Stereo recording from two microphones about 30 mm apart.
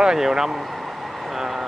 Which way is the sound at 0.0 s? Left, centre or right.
Right.